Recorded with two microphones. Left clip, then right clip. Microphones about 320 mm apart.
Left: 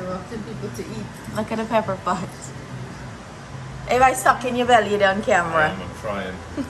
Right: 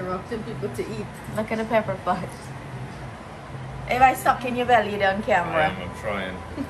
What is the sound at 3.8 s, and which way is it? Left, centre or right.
A woman's voice, centre.